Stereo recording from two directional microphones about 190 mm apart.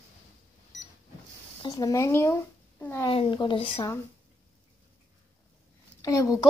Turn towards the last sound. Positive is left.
turn(degrees=20)  # may be behind; listen again after turning